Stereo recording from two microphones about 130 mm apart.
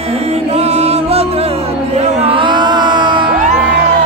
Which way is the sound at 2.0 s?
50° right (ahead or behind).